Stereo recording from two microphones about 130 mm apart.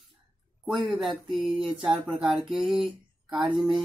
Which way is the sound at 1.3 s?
Centre (ahead or behind).